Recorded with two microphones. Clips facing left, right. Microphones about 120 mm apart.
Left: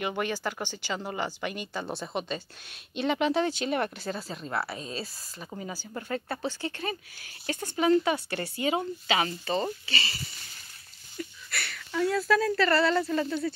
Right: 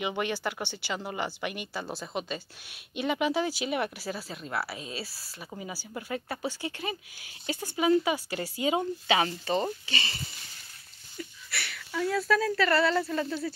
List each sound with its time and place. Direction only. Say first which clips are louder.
0.0 s speech: even; 15° right (ahead or behind)
11.5 s speech: left 2 dB; 5° right (ahead or behind)